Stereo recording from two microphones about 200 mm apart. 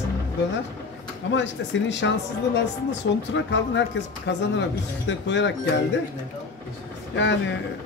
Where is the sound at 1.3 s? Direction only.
65° left (ahead or behind).